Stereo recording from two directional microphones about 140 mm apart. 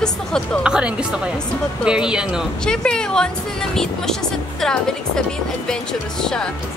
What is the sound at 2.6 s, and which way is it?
A woman's voice, 5° left (ahead or behind).